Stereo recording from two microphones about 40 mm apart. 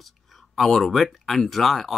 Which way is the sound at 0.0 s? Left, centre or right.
Centre.